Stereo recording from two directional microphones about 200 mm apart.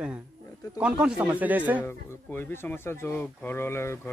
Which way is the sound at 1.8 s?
10° left (ahead or behind).